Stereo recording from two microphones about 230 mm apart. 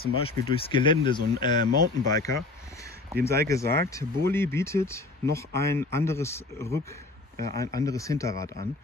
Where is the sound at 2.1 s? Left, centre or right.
Centre.